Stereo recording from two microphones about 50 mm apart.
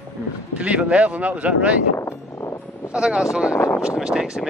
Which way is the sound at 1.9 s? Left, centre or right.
Left.